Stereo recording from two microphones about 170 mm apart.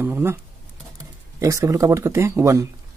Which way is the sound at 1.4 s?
20° right (ahead or behind).